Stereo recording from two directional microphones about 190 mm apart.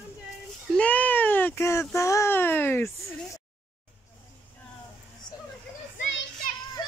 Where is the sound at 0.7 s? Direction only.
10° left (ahead or behind).